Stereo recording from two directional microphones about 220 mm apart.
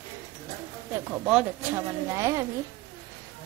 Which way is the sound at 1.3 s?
5° right (ahead or behind).